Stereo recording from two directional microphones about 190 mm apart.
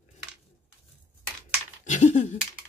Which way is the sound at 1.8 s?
40° left (ahead or behind).